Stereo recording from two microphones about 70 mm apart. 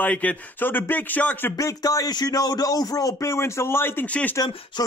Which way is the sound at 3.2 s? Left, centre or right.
Left.